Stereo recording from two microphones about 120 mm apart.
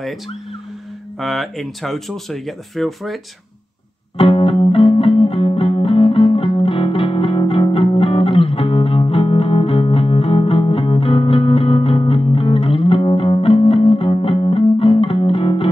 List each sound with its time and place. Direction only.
1.2 s speech: centre (ahead or behind)
4.2 s music: 50° left (ahead or behind)